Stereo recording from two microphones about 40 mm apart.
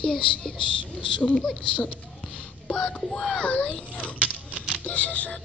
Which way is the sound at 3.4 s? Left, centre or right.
Left.